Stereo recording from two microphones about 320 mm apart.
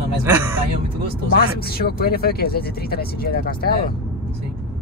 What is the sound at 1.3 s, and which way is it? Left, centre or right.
Speech, left.